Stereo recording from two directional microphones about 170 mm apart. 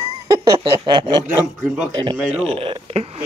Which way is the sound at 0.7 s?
30° right (ahead or behind).